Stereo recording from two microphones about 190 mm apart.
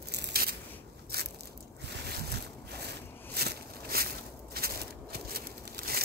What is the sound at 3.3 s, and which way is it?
Crushing, 55° right (ahead or behind).